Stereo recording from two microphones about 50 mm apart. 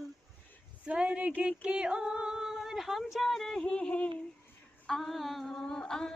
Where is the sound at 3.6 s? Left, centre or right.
Centre.